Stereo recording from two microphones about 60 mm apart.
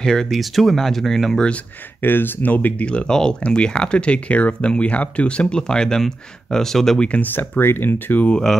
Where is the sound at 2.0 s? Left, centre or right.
Left; by 7.1 s centre.